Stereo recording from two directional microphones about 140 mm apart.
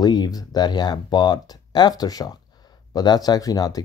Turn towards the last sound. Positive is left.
turn(degrees=25)  # may be behind; listen again after turning